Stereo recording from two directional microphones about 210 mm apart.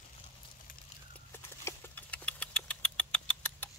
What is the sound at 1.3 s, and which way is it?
Engine, 10° left (ahead or behind).